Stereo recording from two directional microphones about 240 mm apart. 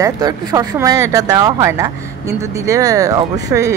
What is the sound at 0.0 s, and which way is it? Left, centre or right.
Speech, centre.